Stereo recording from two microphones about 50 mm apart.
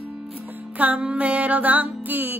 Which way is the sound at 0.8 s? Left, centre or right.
Right.